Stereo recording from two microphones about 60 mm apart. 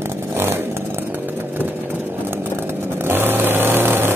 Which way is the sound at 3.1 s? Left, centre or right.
Right.